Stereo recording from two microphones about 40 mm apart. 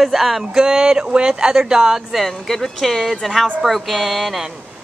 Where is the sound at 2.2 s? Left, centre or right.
Centre.